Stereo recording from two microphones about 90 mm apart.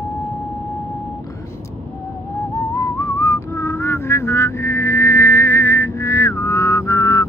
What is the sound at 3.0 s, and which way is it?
Vehicle, 30° left (ahead or behind).